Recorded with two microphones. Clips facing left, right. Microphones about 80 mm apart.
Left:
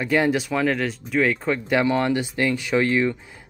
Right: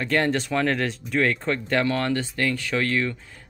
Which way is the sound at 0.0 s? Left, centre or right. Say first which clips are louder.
Left 2 dB; centre.